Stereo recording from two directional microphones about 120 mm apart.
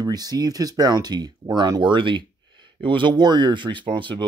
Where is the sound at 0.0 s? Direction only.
30° right (ahead or behind).